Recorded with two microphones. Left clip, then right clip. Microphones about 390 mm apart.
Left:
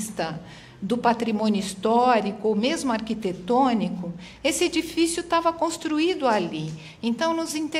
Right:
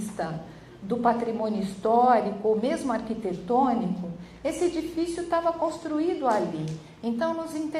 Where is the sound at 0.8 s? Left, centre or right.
Left.